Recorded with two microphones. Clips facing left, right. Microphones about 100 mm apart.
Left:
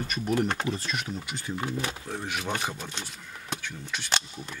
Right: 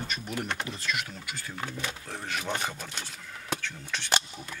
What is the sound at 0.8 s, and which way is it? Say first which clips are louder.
Speech: left 1 dB; 30° left (ahead or behind).